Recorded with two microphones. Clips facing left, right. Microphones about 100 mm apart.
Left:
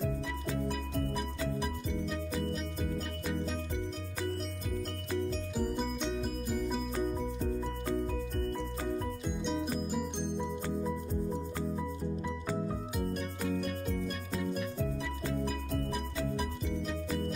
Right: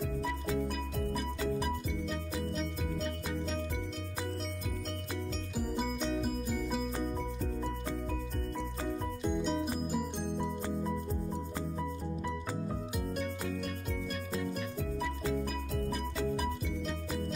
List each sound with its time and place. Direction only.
1.6 s music: centre (ahead or behind)
5.6 s music: centre (ahead or behind)
9.4 s music: centre (ahead or behind)
14.4 s music: centre (ahead or behind)